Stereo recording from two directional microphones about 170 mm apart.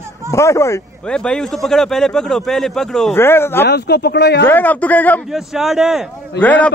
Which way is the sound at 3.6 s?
80° left.